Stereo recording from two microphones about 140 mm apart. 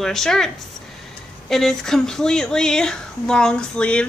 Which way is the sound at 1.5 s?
5° left (ahead or behind).